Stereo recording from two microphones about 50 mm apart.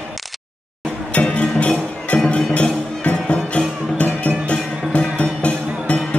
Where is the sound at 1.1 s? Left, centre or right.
Left.